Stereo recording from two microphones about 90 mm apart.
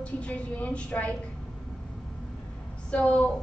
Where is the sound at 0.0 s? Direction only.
15° left (ahead or behind).